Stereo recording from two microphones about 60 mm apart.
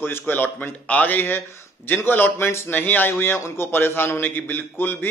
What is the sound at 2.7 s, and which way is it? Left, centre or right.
A man's voice, left.